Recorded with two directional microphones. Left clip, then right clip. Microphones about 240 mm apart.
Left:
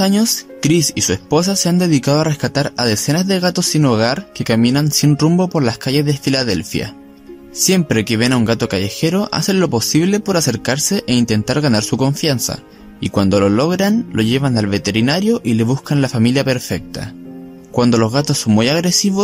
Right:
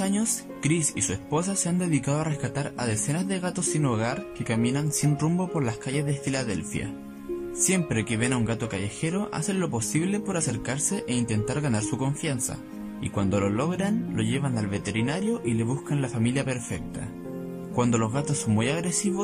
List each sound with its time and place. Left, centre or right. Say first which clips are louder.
0.0 s speech: left 13 dB; left